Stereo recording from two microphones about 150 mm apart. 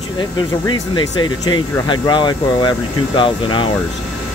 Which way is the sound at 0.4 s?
30° left (ahead or behind).